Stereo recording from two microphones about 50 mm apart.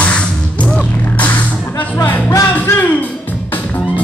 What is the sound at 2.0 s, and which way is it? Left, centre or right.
Music, left.